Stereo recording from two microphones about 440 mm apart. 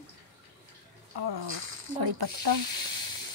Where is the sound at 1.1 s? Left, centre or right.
Right.